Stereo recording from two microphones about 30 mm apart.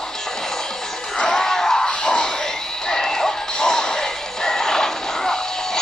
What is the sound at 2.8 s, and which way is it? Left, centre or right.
Music, left.